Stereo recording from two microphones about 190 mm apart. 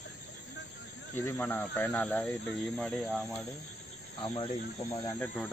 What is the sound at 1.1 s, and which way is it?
Speech, 10° left (ahead or behind).